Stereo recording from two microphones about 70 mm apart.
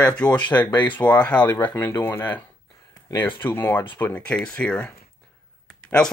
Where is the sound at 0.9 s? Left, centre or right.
Left.